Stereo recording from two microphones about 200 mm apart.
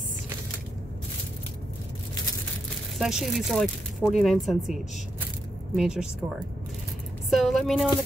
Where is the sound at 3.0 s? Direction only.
Centre (ahead or behind).